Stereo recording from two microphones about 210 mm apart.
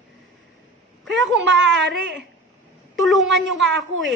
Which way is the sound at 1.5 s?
60° right (ahead or behind).